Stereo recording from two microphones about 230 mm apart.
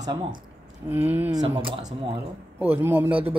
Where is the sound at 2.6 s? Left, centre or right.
Centre.